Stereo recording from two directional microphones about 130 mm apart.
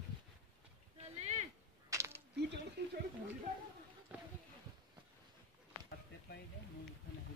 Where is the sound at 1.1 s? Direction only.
60° right (ahead or behind).